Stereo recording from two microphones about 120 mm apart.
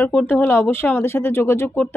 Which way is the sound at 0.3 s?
20° left (ahead or behind).